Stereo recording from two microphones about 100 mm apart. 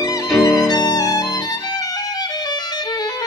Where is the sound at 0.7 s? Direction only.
40° left (ahead or behind).